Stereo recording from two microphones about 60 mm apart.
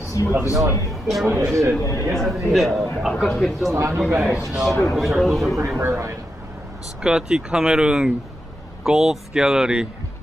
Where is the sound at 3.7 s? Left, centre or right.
Right.